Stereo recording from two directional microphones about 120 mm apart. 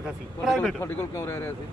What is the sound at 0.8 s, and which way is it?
Speech, 20° left (ahead or behind).